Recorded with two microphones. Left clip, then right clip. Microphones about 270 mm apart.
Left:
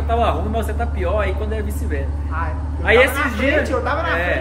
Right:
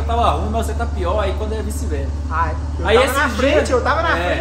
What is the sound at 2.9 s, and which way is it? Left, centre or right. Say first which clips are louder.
Speech: even; right.